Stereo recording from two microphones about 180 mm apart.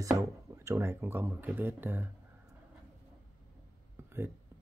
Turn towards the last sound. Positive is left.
turn(degrees=-15)  # may be behind; listen again after turning